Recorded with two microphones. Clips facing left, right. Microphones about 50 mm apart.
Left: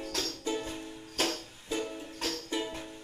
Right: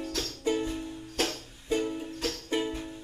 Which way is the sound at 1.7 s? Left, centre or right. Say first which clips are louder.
Right 6 dB; centre.